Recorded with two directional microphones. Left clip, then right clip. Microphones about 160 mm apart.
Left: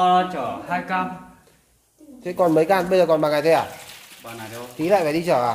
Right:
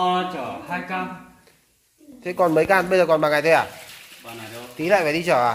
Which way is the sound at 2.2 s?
Centre (ahead or behind).